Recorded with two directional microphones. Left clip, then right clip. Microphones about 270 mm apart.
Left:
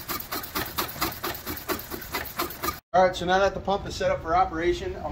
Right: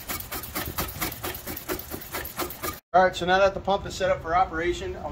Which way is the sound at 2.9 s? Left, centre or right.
Centre.